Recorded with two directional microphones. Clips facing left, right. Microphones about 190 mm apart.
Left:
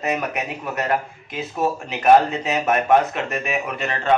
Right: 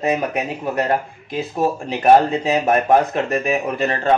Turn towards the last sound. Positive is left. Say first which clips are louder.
# right 4 dB
turn(degrees=-35)  # may be behind; listen again after turning